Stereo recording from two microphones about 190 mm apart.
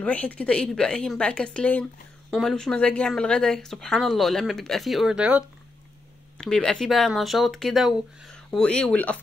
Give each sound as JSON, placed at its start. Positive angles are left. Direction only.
{"t": 0.0, "sound": "speech", "side_deg": 5}
{"t": 6.4, "sound": "speech", "side_deg": 5}